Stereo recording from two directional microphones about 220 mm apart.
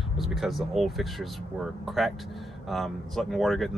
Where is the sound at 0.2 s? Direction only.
Centre (ahead or behind).